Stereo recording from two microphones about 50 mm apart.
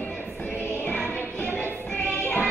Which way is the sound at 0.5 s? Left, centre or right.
Left.